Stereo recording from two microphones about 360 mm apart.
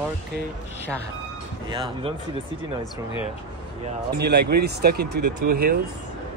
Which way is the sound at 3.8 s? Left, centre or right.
Right.